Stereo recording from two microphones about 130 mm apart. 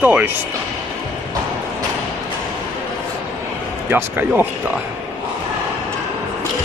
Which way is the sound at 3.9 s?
15° right (ahead or behind).